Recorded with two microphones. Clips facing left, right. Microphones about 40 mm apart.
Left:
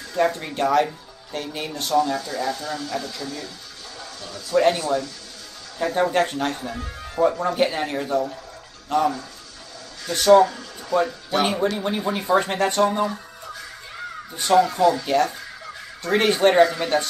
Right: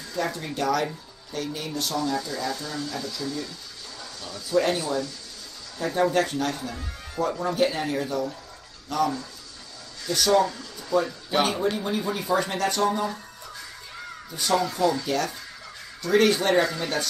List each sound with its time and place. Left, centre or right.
0.1 s speech: left
4.6 s speech: left
14.3 s speech: left